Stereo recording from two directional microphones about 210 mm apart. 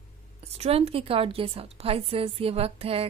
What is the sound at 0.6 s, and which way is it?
A woman's voice, 30° right (ahead or behind).